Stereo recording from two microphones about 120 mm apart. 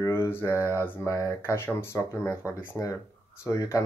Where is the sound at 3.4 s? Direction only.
25° left (ahead or behind).